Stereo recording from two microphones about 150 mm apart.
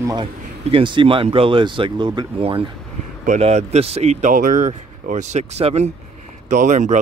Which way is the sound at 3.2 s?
50° right (ahead or behind).